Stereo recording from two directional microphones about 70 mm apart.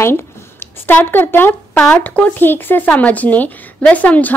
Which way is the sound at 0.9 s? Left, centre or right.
Left.